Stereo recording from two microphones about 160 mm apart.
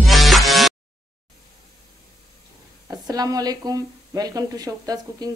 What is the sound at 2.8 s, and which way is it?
Speech, 25° right (ahead or behind).